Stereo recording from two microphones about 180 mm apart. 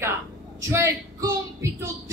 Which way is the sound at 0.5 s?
15° right (ahead or behind).